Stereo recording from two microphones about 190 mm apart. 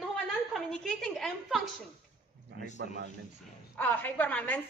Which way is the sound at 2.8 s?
55° right (ahead or behind).